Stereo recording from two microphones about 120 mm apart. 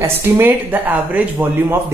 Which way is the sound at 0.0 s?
20° right (ahead or behind).